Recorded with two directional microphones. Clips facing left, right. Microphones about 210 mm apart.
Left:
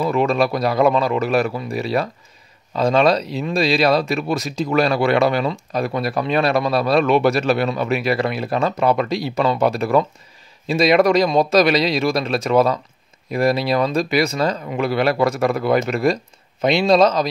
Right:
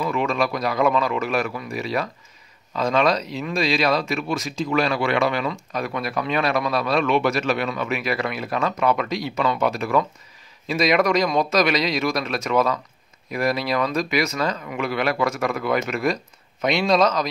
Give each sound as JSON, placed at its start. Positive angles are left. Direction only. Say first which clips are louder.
{"t": 0.0, "sound": "speech", "louder": "left 5 dB", "side_deg": 35}